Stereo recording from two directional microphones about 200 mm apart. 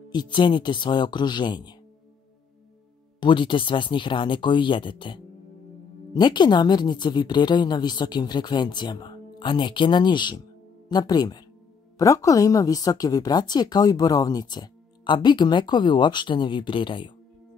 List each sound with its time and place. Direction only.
0.1 s a woman's voice: 20° left (ahead or behind)
3.2 s a woman's voice: 25° left (ahead or behind)